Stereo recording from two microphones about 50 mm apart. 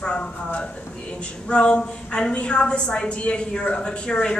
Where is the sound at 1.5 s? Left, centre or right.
Left.